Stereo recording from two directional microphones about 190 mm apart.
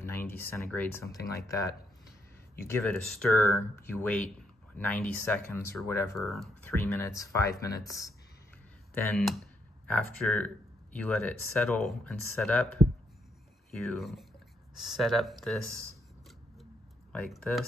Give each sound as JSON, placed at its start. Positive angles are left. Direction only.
{"t": 0.0, "sound": "a sound", "side_deg": 10}
{"t": 0.7, "sound": "speech", "side_deg": 10}
{"t": 2.7, "sound": "speech", "side_deg": 10}
{"t": 3.4, "sound": "speech", "side_deg": 15}
{"t": 6.3, "sound": "speech", "side_deg": 0}
{"t": 6.7, "sound": "speech", "side_deg": 10}
{"t": 8.9, "sound": "speech", "side_deg": 5}
{"t": 17.1, "sound": "speech", "side_deg": 0}